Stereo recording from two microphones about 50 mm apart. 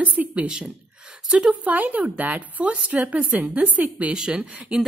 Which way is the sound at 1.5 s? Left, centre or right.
Right.